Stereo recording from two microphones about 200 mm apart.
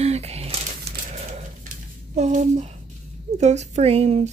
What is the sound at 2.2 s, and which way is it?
Speech, 35° right (ahead or behind).